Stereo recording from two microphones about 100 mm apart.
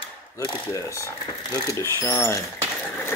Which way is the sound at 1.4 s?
40° left (ahead or behind).